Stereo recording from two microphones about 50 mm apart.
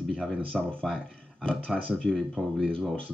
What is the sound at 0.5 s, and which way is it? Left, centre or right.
Speech, centre.